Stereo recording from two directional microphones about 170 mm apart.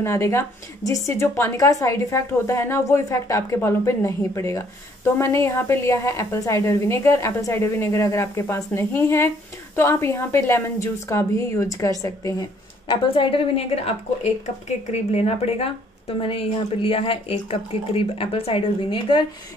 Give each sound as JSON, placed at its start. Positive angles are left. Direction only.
{"t": 0.0, "sound": "a woman's voice", "side_deg": 15}